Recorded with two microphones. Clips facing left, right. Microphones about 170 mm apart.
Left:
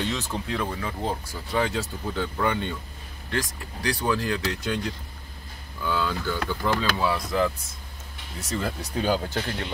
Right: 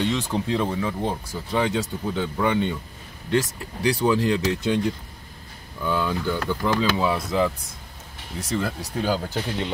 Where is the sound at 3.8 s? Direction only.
20° right (ahead or behind).